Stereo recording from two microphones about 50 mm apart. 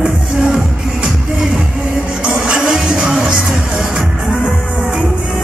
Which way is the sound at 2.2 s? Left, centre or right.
Right.